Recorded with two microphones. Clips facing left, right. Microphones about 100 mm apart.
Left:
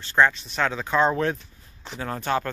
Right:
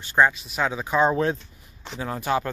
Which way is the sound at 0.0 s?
15° right (ahead or behind).